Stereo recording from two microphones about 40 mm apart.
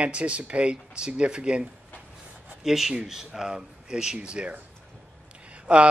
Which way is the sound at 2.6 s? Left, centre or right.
Centre.